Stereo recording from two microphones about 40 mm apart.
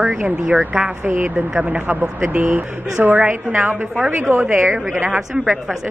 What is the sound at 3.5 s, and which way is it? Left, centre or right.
Speech, right.